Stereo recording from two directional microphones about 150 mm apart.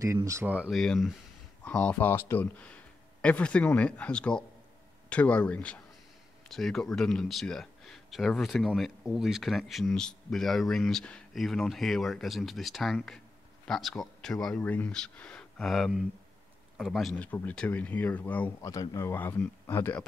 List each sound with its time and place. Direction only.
0.0 s speech: 20° right (ahead or behind)
0.7 s speech: centre (ahead or behind)